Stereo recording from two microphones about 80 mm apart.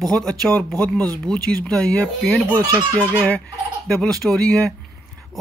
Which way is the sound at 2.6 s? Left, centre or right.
Right.